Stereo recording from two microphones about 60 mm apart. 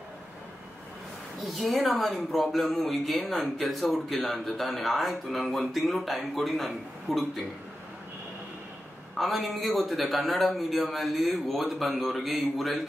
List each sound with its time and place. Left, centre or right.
1.6 s speech: centre
9.1 s speech: centre